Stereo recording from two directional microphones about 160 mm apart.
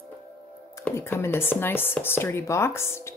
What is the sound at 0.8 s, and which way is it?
Speech, 15° left (ahead or behind).